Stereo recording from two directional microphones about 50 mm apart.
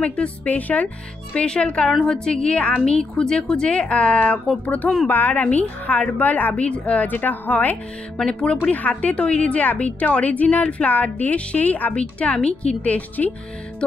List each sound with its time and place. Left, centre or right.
0.0 s a woman's voice: left
1.3 s a woman's voice: left
7.1 s a woman's voice: left
8.3 s a woman's voice: left